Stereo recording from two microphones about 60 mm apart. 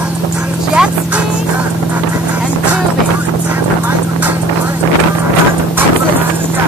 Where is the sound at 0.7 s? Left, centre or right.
Centre.